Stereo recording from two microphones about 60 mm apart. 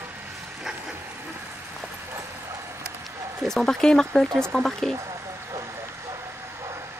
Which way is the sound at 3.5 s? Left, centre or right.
Centre.